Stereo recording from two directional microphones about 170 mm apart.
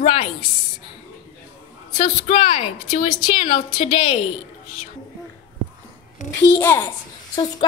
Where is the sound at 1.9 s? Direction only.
35° left (ahead or behind).